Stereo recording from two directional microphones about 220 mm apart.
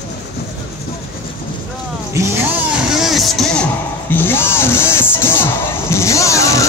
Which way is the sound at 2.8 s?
Centre (ahead or behind).